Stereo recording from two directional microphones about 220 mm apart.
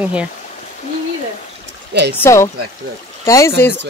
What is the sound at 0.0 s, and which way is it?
Speech, 5° right (ahead or behind).